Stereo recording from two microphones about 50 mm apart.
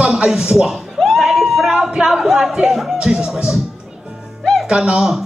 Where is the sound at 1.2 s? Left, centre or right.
Centre.